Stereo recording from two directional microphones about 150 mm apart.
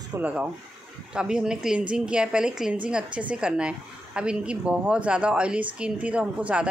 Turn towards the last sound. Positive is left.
turn(degrees=-10)  # may be behind; listen again after turning